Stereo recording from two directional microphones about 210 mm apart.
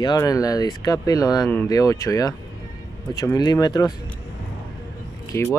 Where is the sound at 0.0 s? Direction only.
15° left (ahead or behind).